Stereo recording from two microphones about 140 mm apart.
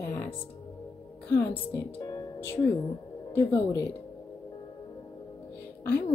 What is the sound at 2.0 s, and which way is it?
Music, 25° left (ahead or behind).